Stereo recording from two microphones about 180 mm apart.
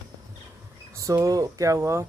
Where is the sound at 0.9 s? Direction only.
15° right (ahead or behind).